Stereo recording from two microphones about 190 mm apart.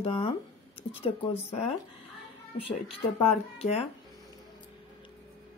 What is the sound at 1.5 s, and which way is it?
Speech, 30° left (ahead or behind).